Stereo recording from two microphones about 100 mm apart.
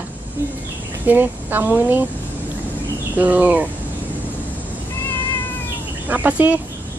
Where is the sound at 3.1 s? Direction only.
15° right (ahead or behind).